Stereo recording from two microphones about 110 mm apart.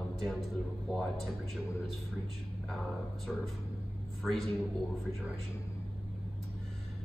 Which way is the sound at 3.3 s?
5° right (ahead or behind).